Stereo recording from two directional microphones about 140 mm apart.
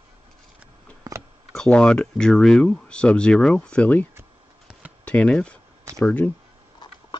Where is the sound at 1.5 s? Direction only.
5° left (ahead or behind).